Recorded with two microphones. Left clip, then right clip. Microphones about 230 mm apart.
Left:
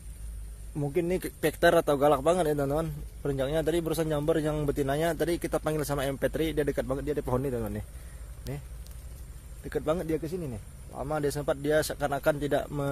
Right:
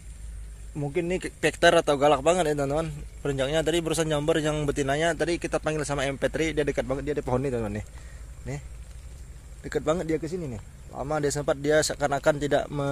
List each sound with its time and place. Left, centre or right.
0.7 s speech: centre; by 7.8 s right
9.6 s speech: right